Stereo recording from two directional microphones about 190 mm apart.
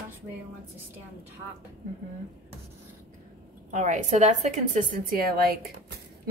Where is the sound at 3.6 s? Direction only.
40° right (ahead or behind).